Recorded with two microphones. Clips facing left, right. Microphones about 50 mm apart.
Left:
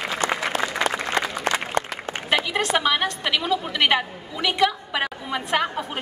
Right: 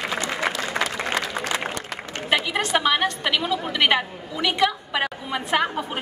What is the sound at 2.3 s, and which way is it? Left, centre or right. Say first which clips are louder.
A woman's voice: even; centre.